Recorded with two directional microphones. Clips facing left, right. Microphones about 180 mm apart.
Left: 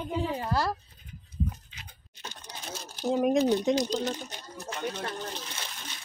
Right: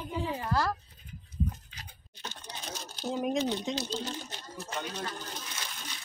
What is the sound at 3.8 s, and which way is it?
Speech, 15° left (ahead or behind).